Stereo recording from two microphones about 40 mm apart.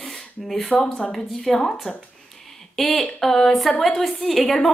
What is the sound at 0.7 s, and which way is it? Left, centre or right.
A woman's voice, centre.